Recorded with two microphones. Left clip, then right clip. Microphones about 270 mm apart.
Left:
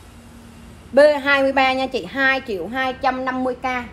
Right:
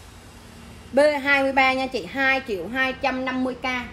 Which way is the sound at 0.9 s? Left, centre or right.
Centre.